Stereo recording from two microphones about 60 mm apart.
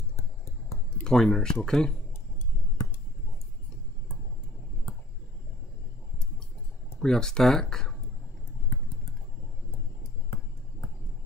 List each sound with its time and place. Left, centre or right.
0.1 s a sound: left
1.0 s speech: centre
7.0 s speech: centre